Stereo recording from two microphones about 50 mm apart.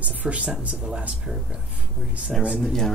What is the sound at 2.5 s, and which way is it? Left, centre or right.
Speech, centre.